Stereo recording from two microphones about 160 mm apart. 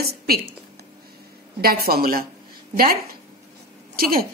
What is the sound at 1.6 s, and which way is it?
Speech, 75° right (ahead or behind).